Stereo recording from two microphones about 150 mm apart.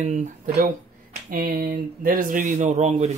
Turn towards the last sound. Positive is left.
turn(degrees=-45)  # may be behind; listen again after turning